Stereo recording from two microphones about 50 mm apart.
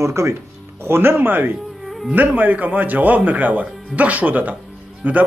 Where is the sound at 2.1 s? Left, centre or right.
Right.